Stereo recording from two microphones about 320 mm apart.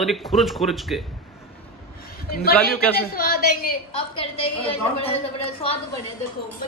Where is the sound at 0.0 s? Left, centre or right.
Centre.